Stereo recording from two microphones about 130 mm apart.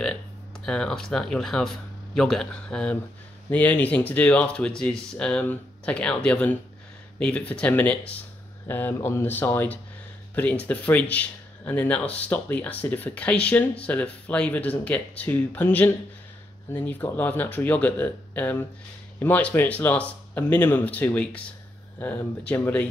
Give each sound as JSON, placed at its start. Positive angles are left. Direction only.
{"t": 0.7, "sound": "speech", "side_deg": 5}